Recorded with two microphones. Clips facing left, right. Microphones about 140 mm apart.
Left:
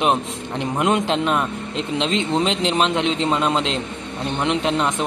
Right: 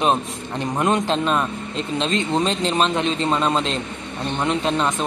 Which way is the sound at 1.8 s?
90° left.